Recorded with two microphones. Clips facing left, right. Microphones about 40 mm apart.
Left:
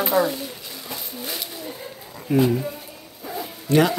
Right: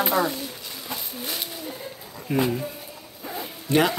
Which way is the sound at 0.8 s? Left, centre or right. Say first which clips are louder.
Even; centre.